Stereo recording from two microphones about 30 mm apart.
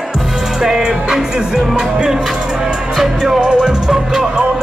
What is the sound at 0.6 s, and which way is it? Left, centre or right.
Music, centre.